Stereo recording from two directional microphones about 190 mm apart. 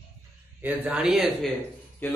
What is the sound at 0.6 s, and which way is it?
Speech, 10° right (ahead or behind).